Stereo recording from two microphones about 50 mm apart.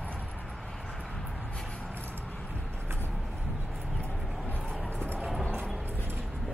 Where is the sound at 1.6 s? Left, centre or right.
Centre.